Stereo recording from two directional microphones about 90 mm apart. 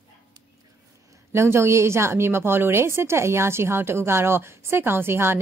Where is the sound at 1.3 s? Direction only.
30° right (ahead or behind).